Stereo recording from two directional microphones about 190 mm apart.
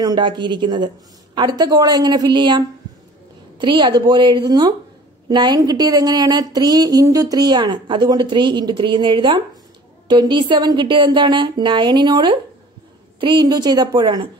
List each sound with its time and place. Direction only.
0.0 s speech: 20° right (ahead or behind)